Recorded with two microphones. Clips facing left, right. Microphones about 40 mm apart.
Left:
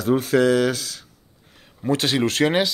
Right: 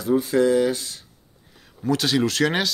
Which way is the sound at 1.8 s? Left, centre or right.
Left.